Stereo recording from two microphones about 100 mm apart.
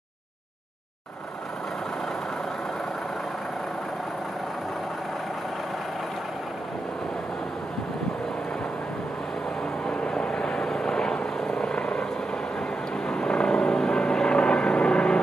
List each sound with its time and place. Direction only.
9.8 s vehicle: 10° left (ahead or behind)
13.1 s vehicle: 10° left (ahead or behind)